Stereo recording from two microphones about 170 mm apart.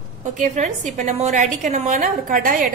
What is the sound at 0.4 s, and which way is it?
A woman's voice, 45° right (ahead or behind).